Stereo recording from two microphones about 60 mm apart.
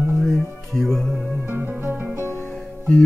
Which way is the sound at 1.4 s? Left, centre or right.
Right.